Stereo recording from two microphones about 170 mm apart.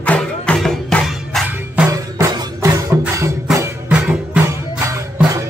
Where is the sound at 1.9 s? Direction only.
20° right (ahead or behind).